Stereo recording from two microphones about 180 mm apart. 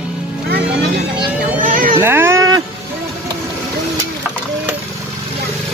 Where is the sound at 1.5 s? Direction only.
50° right (ahead or behind).